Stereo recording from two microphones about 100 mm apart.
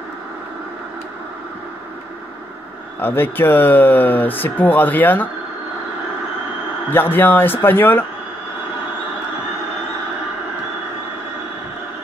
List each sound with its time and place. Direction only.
3.0 s speech: 20° left (ahead or behind)
6.9 s speech: 20° left (ahead or behind)